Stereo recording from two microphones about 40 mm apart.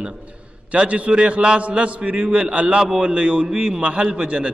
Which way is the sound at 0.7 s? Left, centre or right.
Right.